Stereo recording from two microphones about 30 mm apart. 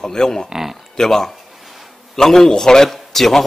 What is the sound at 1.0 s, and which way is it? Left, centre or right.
Speech, centre.